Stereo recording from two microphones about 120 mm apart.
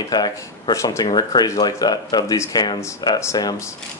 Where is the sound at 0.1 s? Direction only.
35° left (ahead or behind).